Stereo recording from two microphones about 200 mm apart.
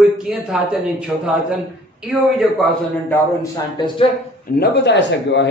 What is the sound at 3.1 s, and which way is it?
Speech, 20° left (ahead or behind).